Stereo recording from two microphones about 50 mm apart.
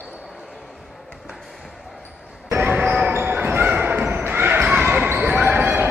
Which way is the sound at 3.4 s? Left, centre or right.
Right.